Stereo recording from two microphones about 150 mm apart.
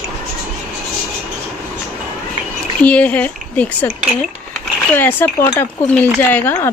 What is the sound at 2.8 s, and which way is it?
Speech, 10° left (ahead or behind).